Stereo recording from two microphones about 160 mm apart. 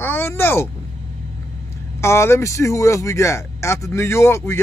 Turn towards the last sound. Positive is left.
turn(degrees=15)  # may be behind; listen again after turning